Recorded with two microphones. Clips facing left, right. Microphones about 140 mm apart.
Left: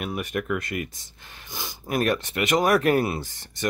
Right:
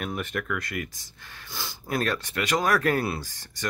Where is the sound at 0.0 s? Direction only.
10° left (ahead or behind).